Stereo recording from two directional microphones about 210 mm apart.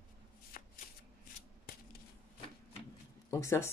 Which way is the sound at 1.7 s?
45° left (ahead or behind).